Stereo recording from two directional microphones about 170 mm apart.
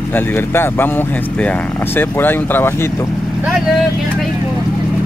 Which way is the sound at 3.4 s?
5° right (ahead or behind).